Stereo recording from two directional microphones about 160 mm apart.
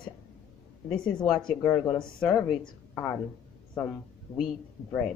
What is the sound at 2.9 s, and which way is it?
Speech, 15° left (ahead or behind).